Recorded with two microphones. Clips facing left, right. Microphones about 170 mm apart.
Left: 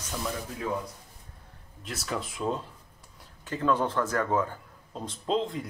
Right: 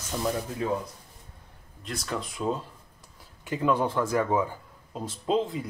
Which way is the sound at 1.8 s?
5° left (ahead or behind).